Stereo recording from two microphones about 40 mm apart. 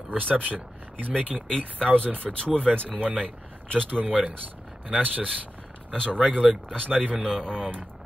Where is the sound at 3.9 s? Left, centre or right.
Right.